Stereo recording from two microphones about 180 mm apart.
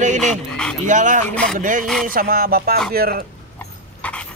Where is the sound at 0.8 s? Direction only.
45° right (ahead or behind).